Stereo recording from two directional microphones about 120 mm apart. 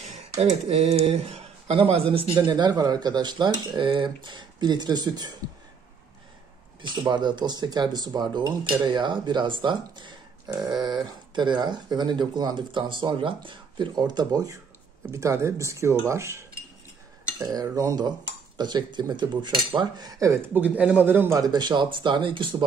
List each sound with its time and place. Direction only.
0.4 s speech: 60° right (ahead or behind)
2.4 s speech: 40° right (ahead or behind)
6.8 s speech: 40° right (ahead or behind)
20.5 s a man's voice: 15° right (ahead or behind)
21.4 s speech: 35° right (ahead or behind)